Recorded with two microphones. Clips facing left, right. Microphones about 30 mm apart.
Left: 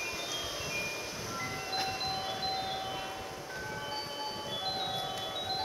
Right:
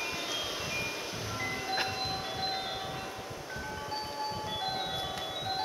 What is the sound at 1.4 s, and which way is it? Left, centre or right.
Music, right.